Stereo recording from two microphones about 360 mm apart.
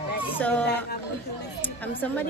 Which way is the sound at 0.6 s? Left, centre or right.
Left.